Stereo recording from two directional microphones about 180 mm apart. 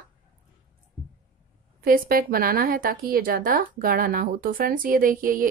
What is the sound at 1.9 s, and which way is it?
A woman's voice, 55° right (ahead or behind).